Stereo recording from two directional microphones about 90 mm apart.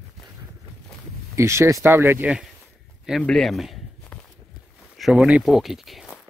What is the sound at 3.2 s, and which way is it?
Speech, 5° left (ahead or behind).